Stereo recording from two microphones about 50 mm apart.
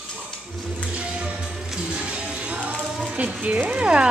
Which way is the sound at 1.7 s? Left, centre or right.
Centre.